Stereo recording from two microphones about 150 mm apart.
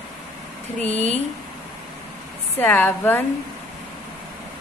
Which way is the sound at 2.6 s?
10° left (ahead or behind).